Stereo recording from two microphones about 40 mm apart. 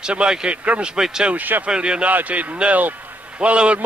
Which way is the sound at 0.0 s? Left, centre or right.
Right.